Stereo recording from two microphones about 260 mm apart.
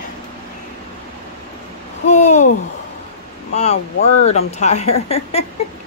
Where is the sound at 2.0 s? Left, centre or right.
Left.